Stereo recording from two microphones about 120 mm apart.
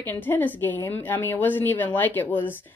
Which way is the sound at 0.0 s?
15° left (ahead or behind).